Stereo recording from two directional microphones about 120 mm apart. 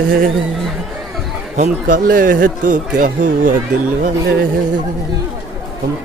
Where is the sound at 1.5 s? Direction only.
90° right.